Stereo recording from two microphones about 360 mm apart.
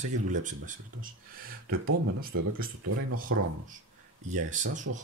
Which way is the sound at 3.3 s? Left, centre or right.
Right.